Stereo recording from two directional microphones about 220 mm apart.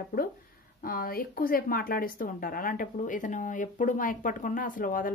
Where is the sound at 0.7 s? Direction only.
40° left (ahead or behind).